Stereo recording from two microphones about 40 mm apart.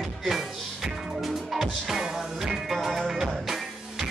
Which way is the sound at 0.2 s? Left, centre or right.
Centre.